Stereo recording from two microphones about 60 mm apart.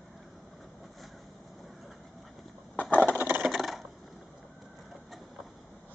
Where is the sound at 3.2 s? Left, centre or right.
Right.